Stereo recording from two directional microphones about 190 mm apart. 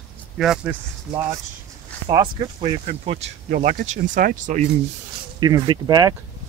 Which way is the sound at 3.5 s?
45° right (ahead or behind).